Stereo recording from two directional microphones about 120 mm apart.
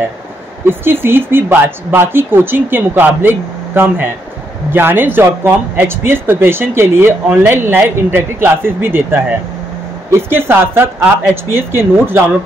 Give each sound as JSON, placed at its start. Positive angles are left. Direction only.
{"t": 0.7, "sound": "speech", "side_deg": -20}